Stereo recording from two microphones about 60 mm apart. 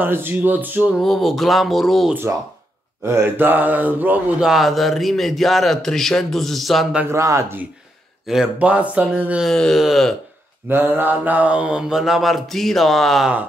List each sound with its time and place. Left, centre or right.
0.0 s speech: right
1.0 s mantra: centre
3.0 s speech: right
4.4 s mantra: centre
7.1 s speech: right
8.5 s speech: right
9.5 s speech: centre
9.8 s mantra: centre
10.7 s mantra: right; by 13.3 s centre